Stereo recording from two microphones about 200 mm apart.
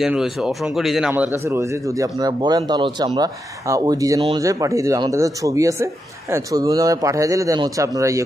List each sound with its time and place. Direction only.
0.0 s speech: centre (ahead or behind)